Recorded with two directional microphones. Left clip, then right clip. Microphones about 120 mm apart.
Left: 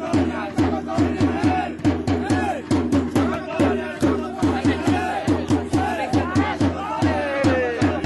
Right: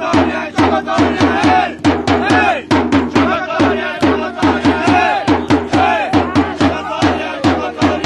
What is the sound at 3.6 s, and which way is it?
Music, 60° right (ahead or behind).